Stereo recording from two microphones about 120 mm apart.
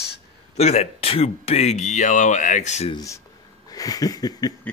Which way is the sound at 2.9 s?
25° left (ahead or behind).